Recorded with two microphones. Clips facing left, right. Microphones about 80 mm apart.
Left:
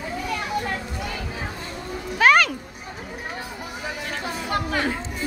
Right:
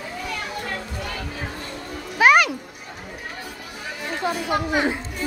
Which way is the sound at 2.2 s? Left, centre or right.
Centre.